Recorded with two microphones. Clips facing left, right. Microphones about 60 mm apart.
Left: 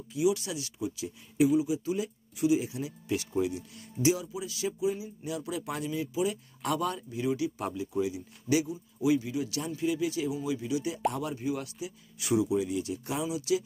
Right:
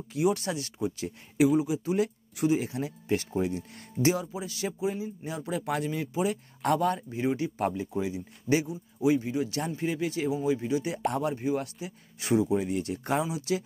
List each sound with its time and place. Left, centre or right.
0.1 s speech: right
5.7 s speech: right